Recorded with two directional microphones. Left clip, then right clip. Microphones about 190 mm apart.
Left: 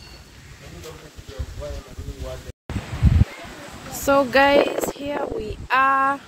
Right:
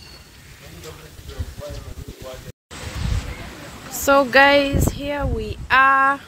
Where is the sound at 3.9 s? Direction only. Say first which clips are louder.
Right 3 dB; centre (ahead or behind).